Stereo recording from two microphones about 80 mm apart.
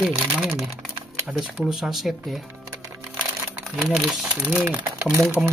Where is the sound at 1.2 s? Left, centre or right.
Centre.